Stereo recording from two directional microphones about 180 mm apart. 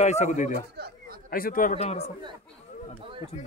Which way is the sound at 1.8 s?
35° left (ahead or behind).